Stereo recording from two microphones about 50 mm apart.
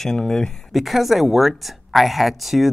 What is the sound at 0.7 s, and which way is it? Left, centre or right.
A woman's voice, centre.